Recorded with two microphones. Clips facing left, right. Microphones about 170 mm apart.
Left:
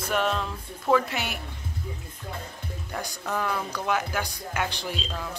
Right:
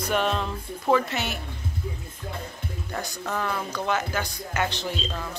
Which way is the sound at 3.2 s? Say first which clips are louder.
Left 1 dB; centre (ahead or behind).